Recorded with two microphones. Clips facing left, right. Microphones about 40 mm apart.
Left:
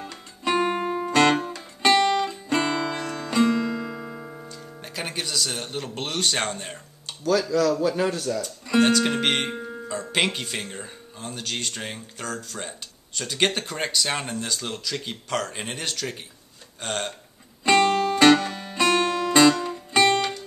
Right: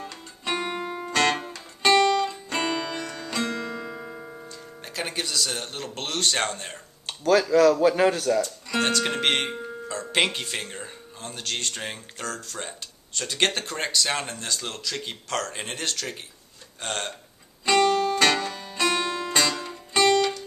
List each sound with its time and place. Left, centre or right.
0.0 s music: centre
0.6 s music: left
2.0 s music: left
2.6 s music: centre
7.1 s speech: centre
7.8 s a man's voice: right
8.8 s speech: centre
17.6 s music: left